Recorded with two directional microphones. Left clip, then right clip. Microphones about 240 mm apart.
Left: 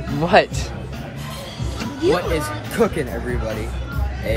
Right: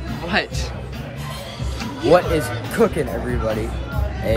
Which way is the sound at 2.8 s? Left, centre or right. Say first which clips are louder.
Right 1 dB; centre.